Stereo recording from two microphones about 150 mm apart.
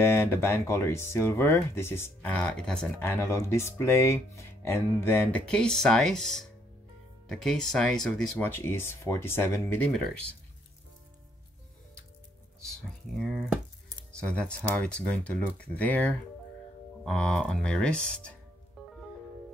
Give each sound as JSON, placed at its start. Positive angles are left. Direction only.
{"t": 0.0, "sound": "speech", "side_deg": 15}
{"t": 12.6, "sound": "speech", "side_deg": 0}
{"t": 18.8, "sound": "music", "side_deg": 0}